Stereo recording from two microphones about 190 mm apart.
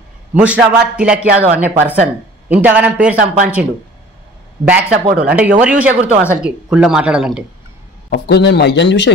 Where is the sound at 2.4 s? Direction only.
10° right (ahead or behind).